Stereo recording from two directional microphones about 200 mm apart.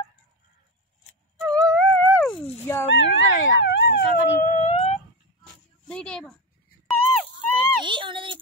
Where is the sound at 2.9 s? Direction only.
65° left (ahead or behind).